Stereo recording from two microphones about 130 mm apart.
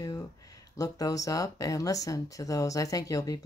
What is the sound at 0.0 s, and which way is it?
Speech, 25° left (ahead or behind).